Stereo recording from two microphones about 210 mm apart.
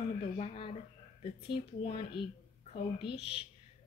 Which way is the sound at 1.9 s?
25° left (ahead or behind).